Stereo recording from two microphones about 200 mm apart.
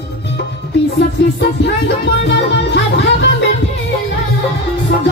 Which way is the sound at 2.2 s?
60° left (ahead or behind).